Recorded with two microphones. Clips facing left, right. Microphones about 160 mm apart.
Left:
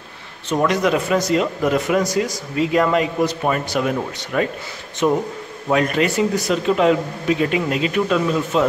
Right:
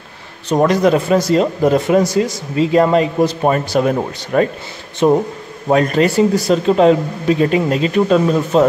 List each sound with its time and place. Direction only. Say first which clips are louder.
0.5 s speech: right 5 dB; 35° right (ahead or behind)